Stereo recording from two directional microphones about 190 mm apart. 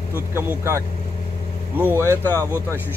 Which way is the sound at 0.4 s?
15° right (ahead or behind).